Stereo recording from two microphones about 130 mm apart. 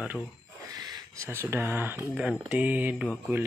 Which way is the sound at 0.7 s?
30° right (ahead or behind).